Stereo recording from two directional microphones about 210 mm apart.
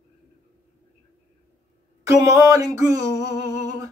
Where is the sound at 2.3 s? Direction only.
15° right (ahead or behind).